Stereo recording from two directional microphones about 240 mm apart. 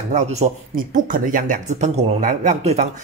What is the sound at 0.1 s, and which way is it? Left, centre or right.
Speech, right.